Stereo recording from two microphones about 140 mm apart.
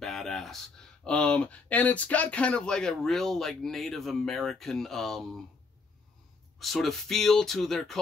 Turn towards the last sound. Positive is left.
turn(degrees=0)  # may be behind; listen again after turning